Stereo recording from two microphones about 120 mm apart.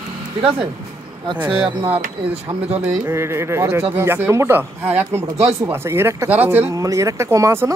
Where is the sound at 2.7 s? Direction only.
70° right (ahead or behind).